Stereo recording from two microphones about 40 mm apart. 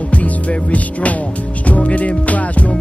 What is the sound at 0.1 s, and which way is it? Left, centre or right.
Music, left.